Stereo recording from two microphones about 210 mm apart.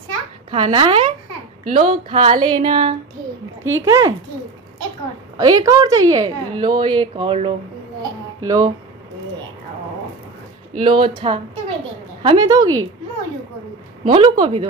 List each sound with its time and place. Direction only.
0.5 s a woman's voice: 25° right (ahead or behind)
3.8 s a woman's voice: 15° right (ahead or behind)
5.4 s a woman's voice: 15° right (ahead or behind)
10.8 s a woman's voice: 20° right (ahead or behind)
14.0 s a woman's voice: 25° right (ahead or behind)